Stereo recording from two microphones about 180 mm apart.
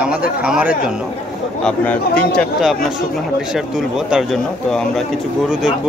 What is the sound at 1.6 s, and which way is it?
Speech, 5° left (ahead or behind).